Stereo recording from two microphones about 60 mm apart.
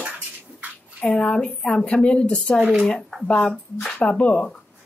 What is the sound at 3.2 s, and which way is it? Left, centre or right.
Speech, centre.